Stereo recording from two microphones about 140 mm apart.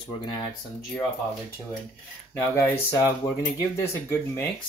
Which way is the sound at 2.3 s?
15° left (ahead or behind).